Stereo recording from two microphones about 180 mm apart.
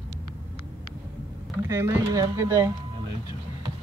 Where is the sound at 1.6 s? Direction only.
15° right (ahead or behind).